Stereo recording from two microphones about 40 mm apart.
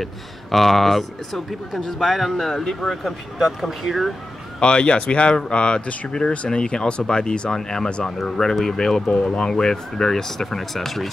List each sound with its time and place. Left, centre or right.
0.0 s speech: centre
4.6 s speech: left; by 11.1 s centre